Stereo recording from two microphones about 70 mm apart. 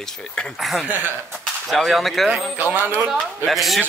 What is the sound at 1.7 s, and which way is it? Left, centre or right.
Speech, centre.